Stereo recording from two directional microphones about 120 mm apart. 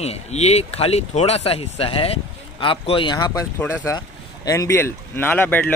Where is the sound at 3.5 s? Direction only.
25° left (ahead or behind).